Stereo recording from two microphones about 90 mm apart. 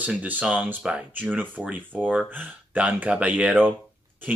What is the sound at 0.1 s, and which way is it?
Speech, 15° right (ahead or behind).